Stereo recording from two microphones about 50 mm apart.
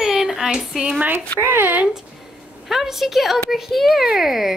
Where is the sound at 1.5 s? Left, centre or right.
Right.